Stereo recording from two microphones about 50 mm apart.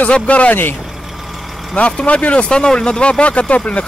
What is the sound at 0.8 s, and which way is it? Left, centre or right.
Vehicle, centre.